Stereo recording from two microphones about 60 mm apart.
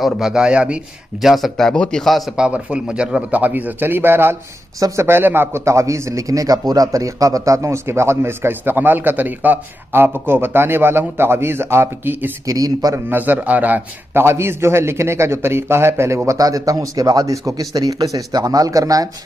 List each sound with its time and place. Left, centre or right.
0.0 s a man's voice: centre
1.2 s speech: centre
1.7 s a man's voice: centre
2.0 s speech: centre
2.3 s a man's voice: centre
3.3 s a man's voice: right
5.7 s a man's voice: right
12.4 s a man's voice: right
13.1 s a man's voice: right
14.2 s a man's voice: right
16.3 s a man's voice: right